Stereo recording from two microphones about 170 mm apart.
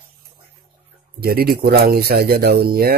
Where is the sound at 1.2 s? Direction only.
65° right (ahead or behind).